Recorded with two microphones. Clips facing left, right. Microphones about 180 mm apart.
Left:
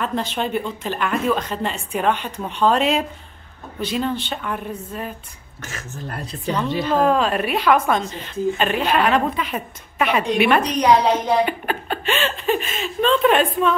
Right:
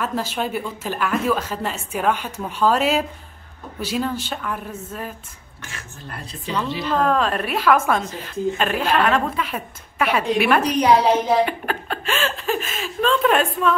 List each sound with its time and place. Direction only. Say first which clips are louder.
0.0 s a woman's voice: left 1 dB; 5° right (ahead or behind)
5.6 s speech: left 5 dB; 40° left (ahead or behind)
7.0 s a woman's voice: left 1 dB; centre (ahead or behind)